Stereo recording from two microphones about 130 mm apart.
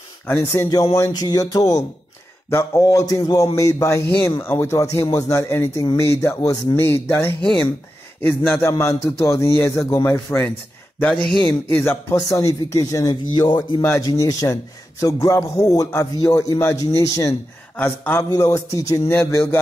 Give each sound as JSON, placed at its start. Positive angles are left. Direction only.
{"t": 0.4, "sound": "a man's voice", "side_deg": 25}
{"t": 13.1, "sound": "speech", "side_deg": 35}
{"t": 13.8, "sound": "a man's voice", "side_deg": 25}
{"t": 17.7, "sound": "speech", "side_deg": 15}
{"t": 18.3, "sound": "a man's voice", "side_deg": 25}